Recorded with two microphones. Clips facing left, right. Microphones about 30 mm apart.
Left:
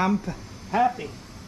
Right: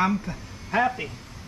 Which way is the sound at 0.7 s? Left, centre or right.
Right.